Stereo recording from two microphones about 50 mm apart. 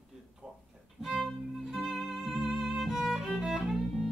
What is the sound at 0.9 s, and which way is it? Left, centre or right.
Music, centre.